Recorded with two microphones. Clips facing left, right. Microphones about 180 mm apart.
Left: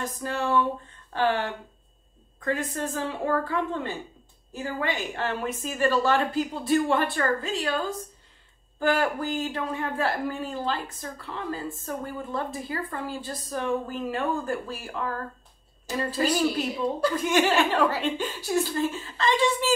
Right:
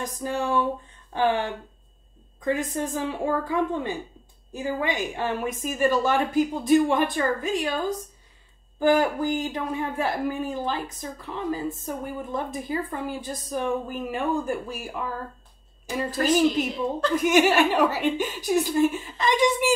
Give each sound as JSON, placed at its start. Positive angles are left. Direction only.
{"t": 0.0, "sound": "a woman's voice", "side_deg": -15}
{"t": 16.4, "sound": "a woman's voice", "side_deg": 10}
{"t": 17.1, "sound": "a woman's voice", "side_deg": -15}